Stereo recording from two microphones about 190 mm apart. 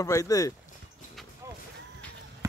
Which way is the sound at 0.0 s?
20° left (ahead or behind).